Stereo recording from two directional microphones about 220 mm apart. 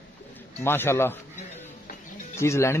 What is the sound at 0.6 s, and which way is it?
Speech, 10° left (ahead or behind).